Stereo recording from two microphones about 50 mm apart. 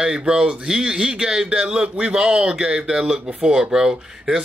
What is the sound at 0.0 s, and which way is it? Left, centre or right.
Speech, centre.